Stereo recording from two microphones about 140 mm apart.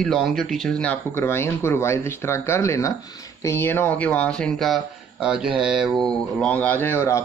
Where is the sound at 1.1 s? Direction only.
15° left (ahead or behind).